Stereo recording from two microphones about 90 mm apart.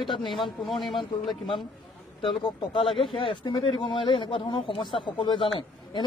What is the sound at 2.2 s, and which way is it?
A man's voice, 75° left (ahead or behind).